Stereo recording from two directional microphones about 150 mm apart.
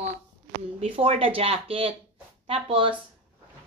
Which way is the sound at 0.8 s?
40° right (ahead or behind).